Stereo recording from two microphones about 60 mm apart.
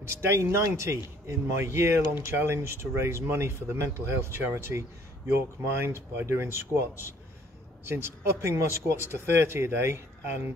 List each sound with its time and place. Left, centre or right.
0.0 s a man's voice: right